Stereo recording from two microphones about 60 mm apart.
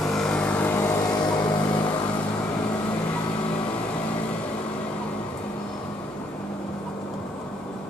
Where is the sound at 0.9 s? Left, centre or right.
Left.